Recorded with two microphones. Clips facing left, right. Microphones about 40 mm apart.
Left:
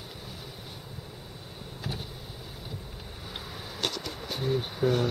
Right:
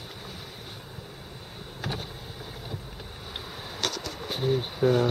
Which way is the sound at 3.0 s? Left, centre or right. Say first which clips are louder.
Right 2 dB; centre.